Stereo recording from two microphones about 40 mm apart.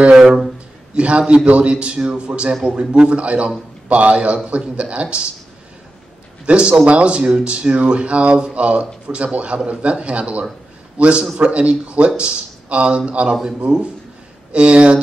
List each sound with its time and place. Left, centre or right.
0.9 s a man's voice: right
6.4 s a man's voice: right